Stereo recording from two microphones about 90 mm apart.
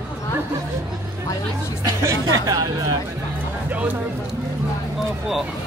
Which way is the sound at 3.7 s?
20° right (ahead or behind).